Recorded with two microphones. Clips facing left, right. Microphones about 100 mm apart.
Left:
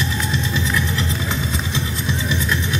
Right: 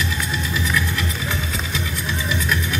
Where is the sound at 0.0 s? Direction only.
25° left (ahead or behind).